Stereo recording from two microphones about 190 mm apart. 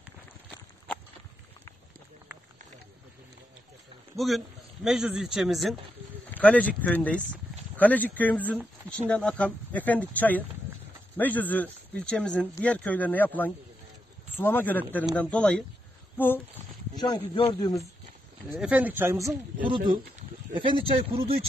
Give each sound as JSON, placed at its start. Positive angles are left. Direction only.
{"t": 4.2, "sound": "speech", "side_deg": 0}
{"t": 16.9, "sound": "speech", "side_deg": 20}
{"t": 18.5, "sound": "speech", "side_deg": -5}
{"t": 20.5, "sound": "speech", "side_deg": -25}